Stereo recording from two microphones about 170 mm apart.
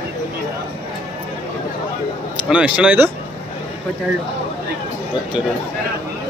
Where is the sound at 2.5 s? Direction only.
5° right (ahead or behind).